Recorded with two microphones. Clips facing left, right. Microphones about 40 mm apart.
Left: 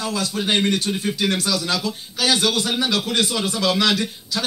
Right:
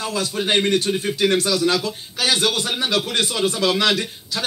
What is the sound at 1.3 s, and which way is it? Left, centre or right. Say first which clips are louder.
Speech: right 4 dB; right.